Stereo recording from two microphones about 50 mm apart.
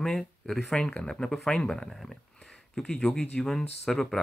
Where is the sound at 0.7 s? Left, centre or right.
Centre.